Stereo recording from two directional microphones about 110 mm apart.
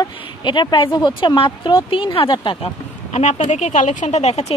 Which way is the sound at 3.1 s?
90° left.